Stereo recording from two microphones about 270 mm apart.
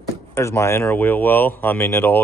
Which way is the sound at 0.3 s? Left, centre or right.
Centre.